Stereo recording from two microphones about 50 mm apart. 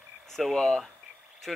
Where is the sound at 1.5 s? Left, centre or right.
Centre.